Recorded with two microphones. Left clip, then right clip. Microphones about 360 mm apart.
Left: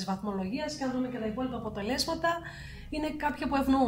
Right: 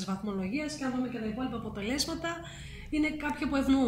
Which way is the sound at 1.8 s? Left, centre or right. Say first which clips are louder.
Left 3 dB; left.